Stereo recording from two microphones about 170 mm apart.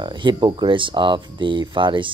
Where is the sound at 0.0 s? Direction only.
25° right (ahead or behind).